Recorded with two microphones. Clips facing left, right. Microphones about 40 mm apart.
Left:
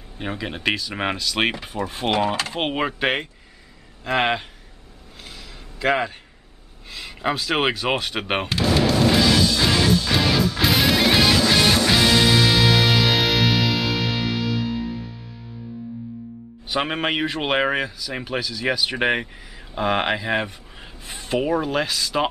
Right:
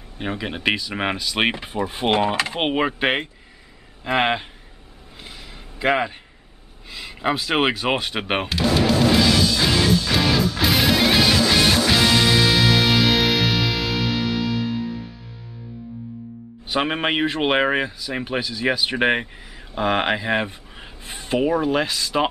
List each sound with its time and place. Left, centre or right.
0.2 s speech: centre
2.7 s speech: centre
5.2 s a sound: centre
6.9 s speech: centre
9.6 s music: centre
16.6 s speech: centre